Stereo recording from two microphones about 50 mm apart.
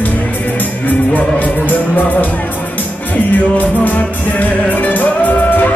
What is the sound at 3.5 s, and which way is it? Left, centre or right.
Music, left.